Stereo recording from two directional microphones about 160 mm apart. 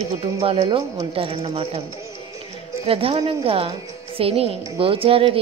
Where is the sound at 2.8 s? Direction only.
35° right (ahead or behind).